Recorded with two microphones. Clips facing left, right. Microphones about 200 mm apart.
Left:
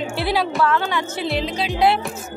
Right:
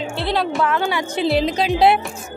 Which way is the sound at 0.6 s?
15° right (ahead or behind).